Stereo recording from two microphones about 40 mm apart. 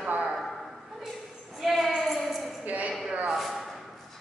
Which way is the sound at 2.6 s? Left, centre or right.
Right.